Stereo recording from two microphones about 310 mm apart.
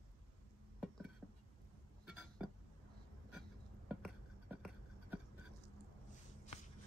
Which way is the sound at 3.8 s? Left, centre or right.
Centre.